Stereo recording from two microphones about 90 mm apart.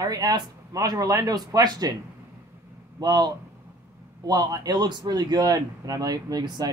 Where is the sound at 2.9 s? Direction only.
50° right (ahead or behind).